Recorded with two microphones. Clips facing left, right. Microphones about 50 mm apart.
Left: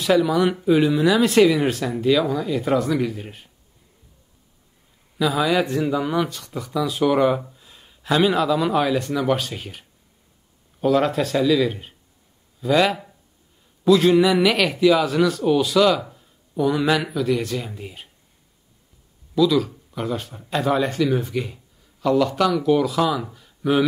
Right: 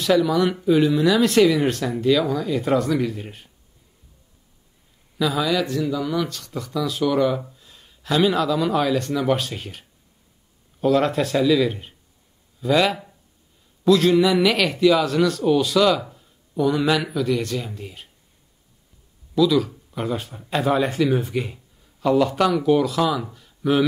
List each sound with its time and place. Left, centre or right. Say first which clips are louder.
0.0 s speech: even; centre
5.1 s a man's voice: left 1 dB; centre
5.5 s a man's voice: left 2 dB; left
6.3 s speech: left 1 dB; centre
7.4 s speech: left 1 dB; centre
19.3 s speech: even; centre
23.3 s a sound: even; centre